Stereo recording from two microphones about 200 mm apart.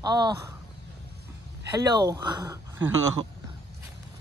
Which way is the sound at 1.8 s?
20° right (ahead or behind).